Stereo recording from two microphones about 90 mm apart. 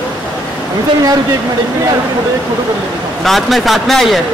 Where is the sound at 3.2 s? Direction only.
Centre (ahead or behind).